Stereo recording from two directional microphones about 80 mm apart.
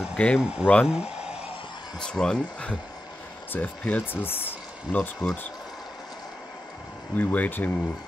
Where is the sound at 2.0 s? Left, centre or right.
Centre.